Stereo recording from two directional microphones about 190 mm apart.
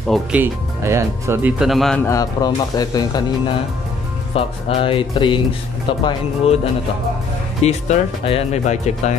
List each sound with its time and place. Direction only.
0.1 s speech: 10° right (ahead or behind)
2.0 s speech: 20° left (ahead or behind); by 9.1 s 35° left (ahead or behind)